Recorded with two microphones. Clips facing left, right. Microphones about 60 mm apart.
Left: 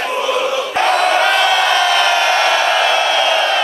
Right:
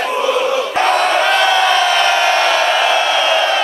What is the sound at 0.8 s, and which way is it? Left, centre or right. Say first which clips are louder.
Crowd: left 1 dB; centre.